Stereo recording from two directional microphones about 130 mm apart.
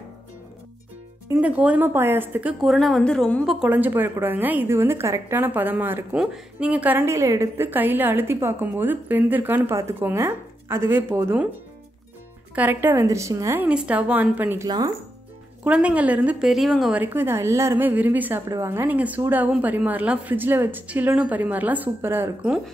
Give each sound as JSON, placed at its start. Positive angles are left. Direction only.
{"t": 1.4, "sound": "a woman's voice", "side_deg": -10}
{"t": 2.6, "sound": "a woman's voice", "side_deg": 0}
{"t": 3.6, "sound": "a woman's voice", "side_deg": -15}
{"t": 12.5, "sound": "a woman's voice", "side_deg": -15}
{"t": 13.7, "sound": "a woman's voice", "side_deg": -10}
{"t": 16.9, "sound": "a woman's voice", "side_deg": -15}